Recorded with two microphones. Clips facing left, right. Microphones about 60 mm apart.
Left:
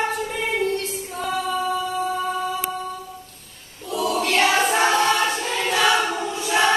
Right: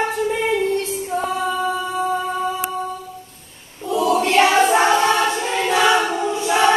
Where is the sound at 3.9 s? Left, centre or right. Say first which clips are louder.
Right 5 dB; right.